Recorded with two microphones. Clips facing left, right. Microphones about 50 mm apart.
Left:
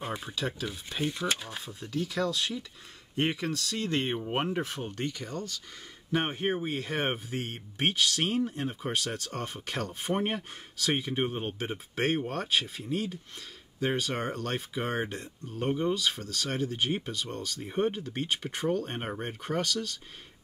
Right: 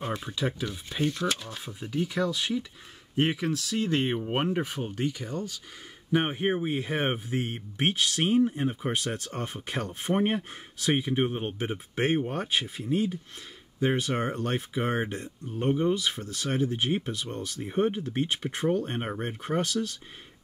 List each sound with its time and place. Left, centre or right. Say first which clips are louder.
0.0 s speech: right 3 dB; centre
0.3 s speech: right 3 dB; centre
1.0 s speech: right 3 dB; centre
1.6 s speech: right 3 dB; centre
15.9 s speech: right 2 dB; centre
17.6 s speech: right 3 dB; centre
18.9 s speech: right 3 dB; centre
19.4 s speech: right 3 dB; right